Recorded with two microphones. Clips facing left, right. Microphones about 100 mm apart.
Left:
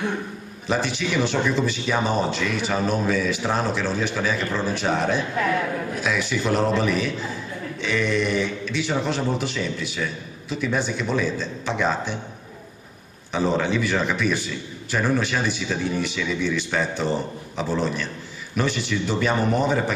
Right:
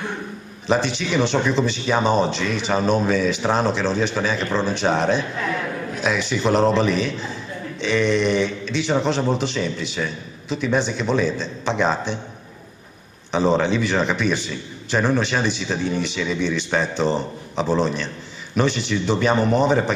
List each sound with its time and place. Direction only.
0.7 s a man's voice: 20° right (ahead or behind)
13.3 s a man's voice: 20° right (ahead or behind)